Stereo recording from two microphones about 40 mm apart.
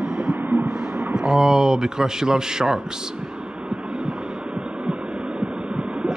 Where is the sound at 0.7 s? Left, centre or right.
Centre.